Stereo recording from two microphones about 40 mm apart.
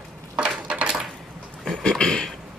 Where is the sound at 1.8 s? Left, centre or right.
Centre.